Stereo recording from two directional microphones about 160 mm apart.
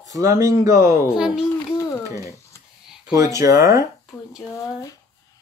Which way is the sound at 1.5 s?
20° left (ahead or behind).